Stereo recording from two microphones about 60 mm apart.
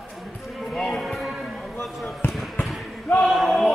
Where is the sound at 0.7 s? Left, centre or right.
Centre.